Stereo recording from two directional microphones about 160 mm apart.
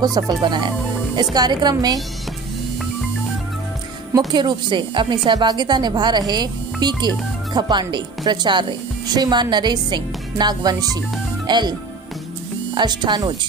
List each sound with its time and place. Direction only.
0.0 s a woman's voice: 25° right (ahead or behind)
4.3 s a woman's voice: 30° right (ahead or behind)
12.7 s a woman's voice: 25° right (ahead or behind)